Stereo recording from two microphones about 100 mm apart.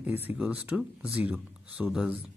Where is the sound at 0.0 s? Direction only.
20° right (ahead or behind).